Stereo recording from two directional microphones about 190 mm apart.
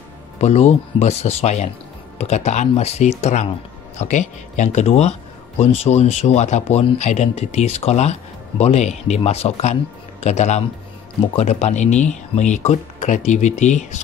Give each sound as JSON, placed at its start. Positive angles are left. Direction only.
{"t": 0.4, "sound": "speech", "side_deg": 35}